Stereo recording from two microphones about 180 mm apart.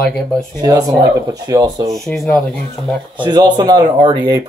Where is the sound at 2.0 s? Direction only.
5° left (ahead or behind).